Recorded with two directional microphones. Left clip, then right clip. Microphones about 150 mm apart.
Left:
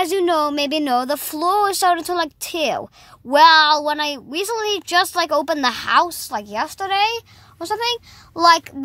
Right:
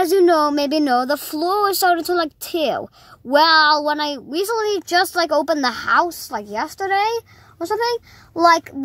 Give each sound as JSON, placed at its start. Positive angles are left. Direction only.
{"t": 0.2, "sound": "speech", "side_deg": 5}
{"t": 5.9, "sound": "a woman's voice", "side_deg": 50}
{"t": 6.3, "sound": "speech", "side_deg": 20}